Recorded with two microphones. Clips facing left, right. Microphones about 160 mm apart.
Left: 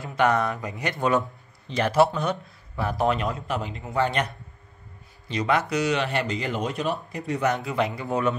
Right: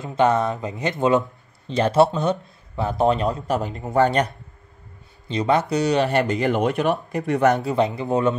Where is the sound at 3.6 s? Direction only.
45° right (ahead or behind).